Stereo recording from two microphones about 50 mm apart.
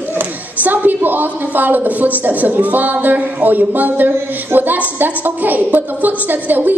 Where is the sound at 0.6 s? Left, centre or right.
Right.